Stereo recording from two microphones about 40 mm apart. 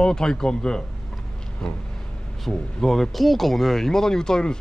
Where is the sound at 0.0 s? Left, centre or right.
Centre.